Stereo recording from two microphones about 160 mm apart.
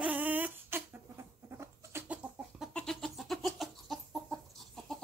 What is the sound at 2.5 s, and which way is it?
Chicken, centre (ahead or behind).